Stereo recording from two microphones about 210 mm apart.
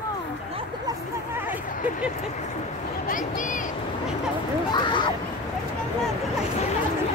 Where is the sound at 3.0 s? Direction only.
40° left (ahead or behind).